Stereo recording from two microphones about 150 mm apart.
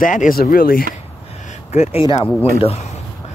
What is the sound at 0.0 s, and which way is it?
Speech, 60° left (ahead or behind).